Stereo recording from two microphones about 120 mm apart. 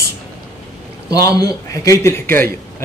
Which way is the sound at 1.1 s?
30° left (ahead or behind).